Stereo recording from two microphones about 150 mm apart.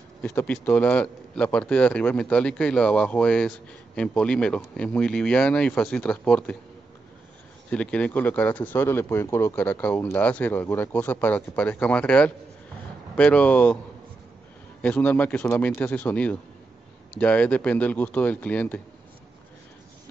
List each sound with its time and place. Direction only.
0.2 s a man's voice: 10° left (ahead or behind)
7.7 s a man's voice: 10° left (ahead or behind)
14.8 s a man's voice: 10° left (ahead or behind)